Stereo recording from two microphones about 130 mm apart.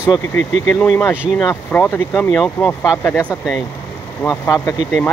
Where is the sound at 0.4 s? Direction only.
65° right (ahead or behind).